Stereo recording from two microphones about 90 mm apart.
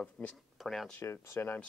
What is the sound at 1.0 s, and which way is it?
Speech, 30° left (ahead or behind).